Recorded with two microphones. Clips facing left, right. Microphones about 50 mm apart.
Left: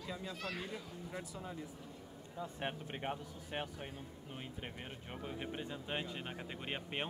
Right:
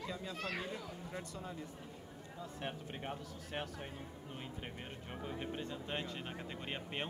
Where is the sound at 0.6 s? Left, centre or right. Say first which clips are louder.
Right 1 dB; centre.